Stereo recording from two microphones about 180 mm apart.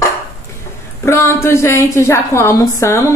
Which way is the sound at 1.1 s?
15° left (ahead or behind).